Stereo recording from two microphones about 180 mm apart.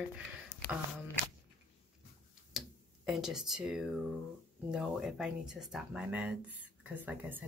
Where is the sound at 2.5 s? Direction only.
Centre (ahead or behind).